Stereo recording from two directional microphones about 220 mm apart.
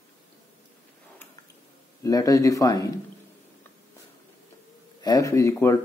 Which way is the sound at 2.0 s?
15° left (ahead or behind).